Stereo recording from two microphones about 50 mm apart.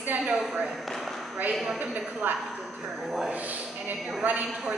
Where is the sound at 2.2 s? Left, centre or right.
Right.